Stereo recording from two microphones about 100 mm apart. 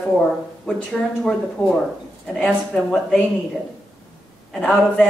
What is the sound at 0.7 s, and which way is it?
A man's voice, 10° left (ahead or behind).